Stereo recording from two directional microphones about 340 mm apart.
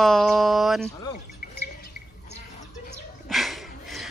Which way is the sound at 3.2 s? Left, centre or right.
Centre.